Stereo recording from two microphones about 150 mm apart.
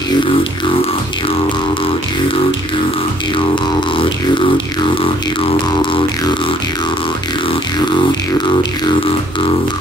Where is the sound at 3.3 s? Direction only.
35° left (ahead or behind).